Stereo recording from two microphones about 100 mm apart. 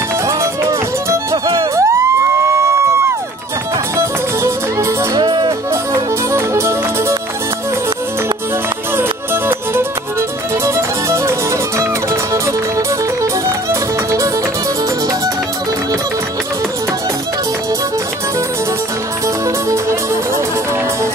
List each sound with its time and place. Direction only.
0.3 s music: 30° right (ahead or behind)
5.2 s music: 50° right (ahead or behind)
5.7 s music: 30° right (ahead or behind)
8.9 s music: 25° right (ahead or behind)
19.2 s music: 30° right (ahead or behind)